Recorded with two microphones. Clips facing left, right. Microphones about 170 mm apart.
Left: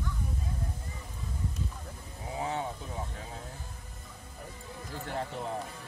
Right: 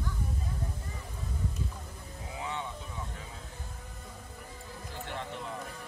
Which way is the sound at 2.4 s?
40° left (ahead or behind).